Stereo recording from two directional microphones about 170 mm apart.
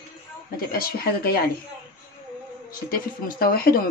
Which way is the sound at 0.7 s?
60° left (ahead or behind).